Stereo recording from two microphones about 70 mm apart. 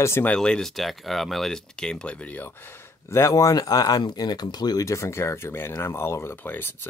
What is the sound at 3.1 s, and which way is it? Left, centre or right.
Speech, left.